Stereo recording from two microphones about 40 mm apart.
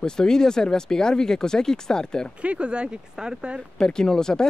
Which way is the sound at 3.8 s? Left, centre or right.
Centre.